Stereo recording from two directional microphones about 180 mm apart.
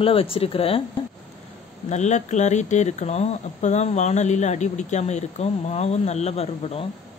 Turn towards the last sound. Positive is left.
turn(degrees=35)  # may be behind; listen again after turning